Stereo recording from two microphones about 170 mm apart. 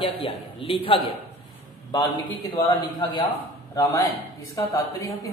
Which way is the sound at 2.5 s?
25° left (ahead or behind).